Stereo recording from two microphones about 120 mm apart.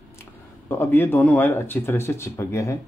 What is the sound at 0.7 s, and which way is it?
Speech, 20° left (ahead or behind).